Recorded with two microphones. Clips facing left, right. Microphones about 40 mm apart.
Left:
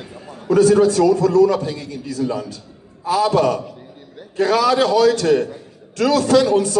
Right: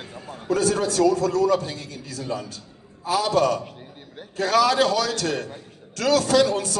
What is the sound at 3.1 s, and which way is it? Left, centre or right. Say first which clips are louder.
A man's voice: left 4 dB; left.